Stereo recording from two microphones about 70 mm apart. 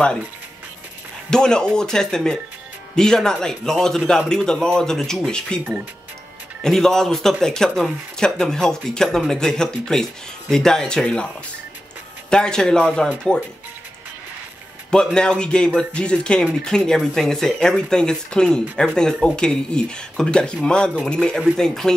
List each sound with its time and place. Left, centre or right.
1.3 s speech: centre
6.6 s speech: centre
12.3 s speech: centre
14.9 s speech: centre